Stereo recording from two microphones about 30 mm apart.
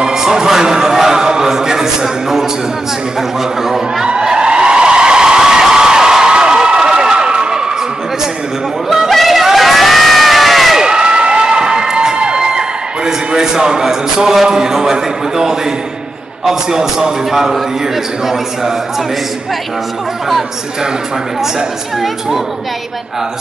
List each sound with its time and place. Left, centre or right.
0.0 s music: centre
0.9 s a man's voice: centre
4.0 s a sound: right
5.4 s a sound: centre
9.1 s crowd: centre
10.8 s cheering: right
16.4 s a man's voice: centre